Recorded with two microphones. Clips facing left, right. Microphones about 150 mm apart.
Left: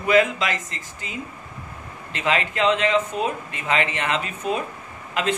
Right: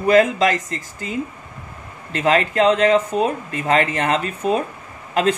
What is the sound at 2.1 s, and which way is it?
Speech, 40° right (ahead or behind).